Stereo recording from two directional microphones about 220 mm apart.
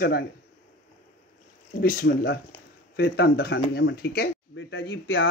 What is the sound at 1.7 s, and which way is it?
Speech, 45° left (ahead or behind).